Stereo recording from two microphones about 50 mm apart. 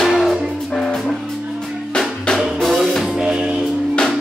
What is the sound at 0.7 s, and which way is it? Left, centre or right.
Music, centre.